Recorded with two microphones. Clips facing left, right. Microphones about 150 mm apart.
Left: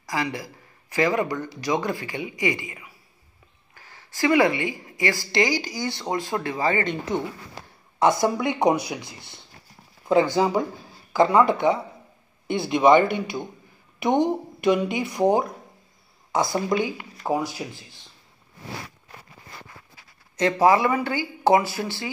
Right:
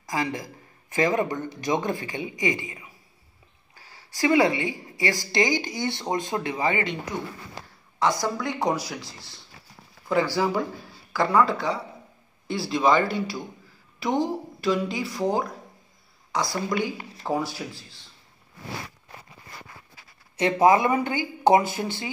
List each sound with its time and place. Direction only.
0.9 s a man's voice: 20° right (ahead or behind)
3.9 s speech: 15° right (ahead or behind)
8.0 s speech: 20° left (ahead or behind)
16.4 s speech: 20° left (ahead or behind)
20.3 s speech: 20° right (ahead or behind)